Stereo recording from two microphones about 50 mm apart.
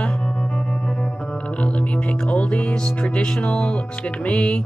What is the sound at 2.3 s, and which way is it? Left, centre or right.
Speech, left.